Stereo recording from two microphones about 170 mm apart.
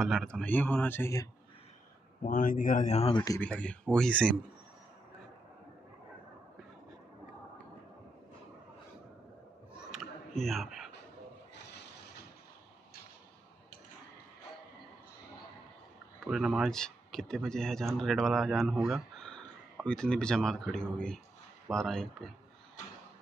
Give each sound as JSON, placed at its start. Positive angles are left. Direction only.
{"t": 0.0, "sound": "speech", "side_deg": 0}
{"t": 2.2, "sound": "speech", "side_deg": 55}
{"t": 3.3, "sound": "speech", "side_deg": 10}
{"t": 9.8, "sound": "a sound", "side_deg": -5}
{"t": 16.3, "sound": "speech", "side_deg": -5}